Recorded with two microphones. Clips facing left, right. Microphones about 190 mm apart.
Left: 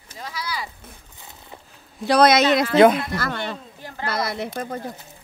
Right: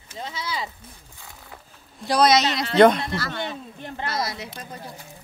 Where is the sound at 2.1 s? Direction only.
55° left (ahead or behind).